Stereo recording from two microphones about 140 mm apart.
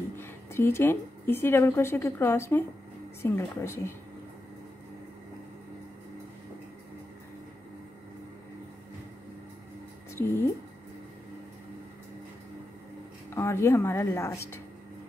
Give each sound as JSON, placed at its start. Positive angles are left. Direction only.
{"t": 0.1, "sound": "a woman's voice", "side_deg": 15}
{"t": 10.1, "sound": "speech", "side_deg": 15}
{"t": 13.3, "sound": "speech", "side_deg": 20}